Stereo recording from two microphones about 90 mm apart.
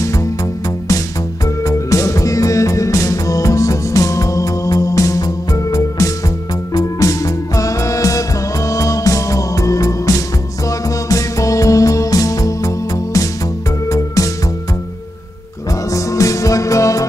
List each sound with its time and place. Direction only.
0.0 s music: 35° left (ahead or behind)
15.9 s music: 35° left (ahead or behind)